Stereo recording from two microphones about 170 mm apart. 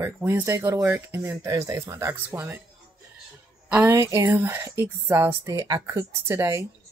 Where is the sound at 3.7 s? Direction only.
15° right (ahead or behind).